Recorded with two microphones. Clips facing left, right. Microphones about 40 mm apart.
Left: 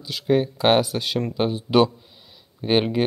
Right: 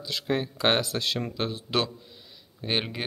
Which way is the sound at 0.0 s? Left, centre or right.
Centre.